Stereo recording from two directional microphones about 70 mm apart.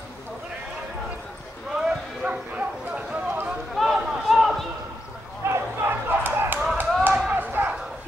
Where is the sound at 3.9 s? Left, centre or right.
Centre.